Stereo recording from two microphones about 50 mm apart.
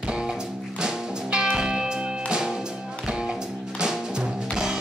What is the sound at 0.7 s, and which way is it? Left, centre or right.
Music, centre.